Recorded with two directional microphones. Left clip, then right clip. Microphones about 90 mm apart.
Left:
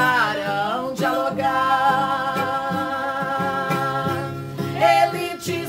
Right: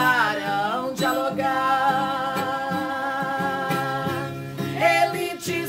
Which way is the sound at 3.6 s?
20° right (ahead or behind).